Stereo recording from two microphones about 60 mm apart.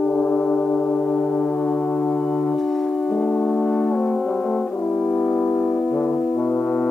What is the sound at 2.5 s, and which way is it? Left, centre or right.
Brass instrument, centre.